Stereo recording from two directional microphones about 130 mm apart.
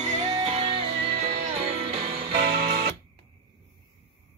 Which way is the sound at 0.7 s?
45° right (ahead or behind).